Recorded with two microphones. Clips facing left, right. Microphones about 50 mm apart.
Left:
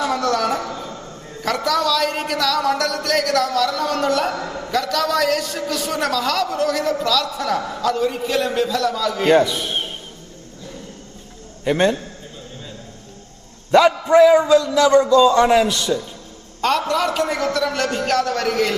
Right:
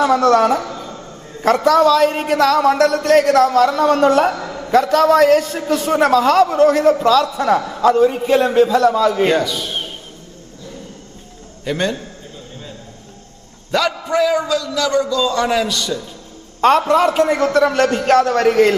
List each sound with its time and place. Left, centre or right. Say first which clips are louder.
0.0 s a woman's voice: right 7 dB; right
0.6 s a sound: right 2 dB; centre
1.4 s a man's voice: right 8 dB; right
4.3 s a sound: right 2 dB; centre
4.6 s a man's voice: right 9 dB; right
9.3 s a man's voice: left 2 dB; centre
11.6 s a man's voice: left 3 dB; centre
13.7 s a man's voice: left 5 dB; centre
16.6 s a man's voice: right 6 dB; right